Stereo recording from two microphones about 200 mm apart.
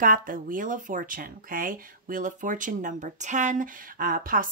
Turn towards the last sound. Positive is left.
turn(degrees=-45)  # may be behind; listen again after turning